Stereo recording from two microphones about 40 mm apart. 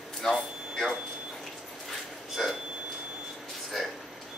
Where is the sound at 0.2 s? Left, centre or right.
Centre.